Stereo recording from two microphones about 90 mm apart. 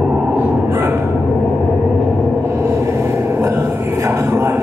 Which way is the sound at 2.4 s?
30° right (ahead or behind).